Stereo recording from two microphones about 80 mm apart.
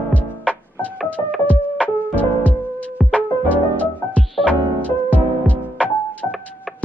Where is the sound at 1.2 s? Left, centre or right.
Left.